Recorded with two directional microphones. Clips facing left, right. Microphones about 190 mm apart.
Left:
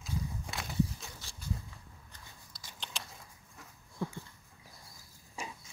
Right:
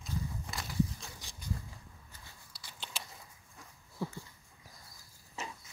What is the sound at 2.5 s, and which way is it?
Biting, 10° right (ahead or behind).